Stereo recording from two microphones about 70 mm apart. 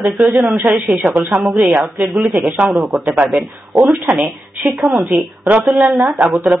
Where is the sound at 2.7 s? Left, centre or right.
Centre.